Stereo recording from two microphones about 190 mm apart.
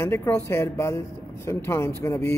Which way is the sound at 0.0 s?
15° left (ahead or behind).